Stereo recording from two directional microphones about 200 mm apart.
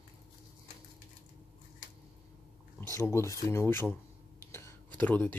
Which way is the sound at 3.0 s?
15° left (ahead or behind).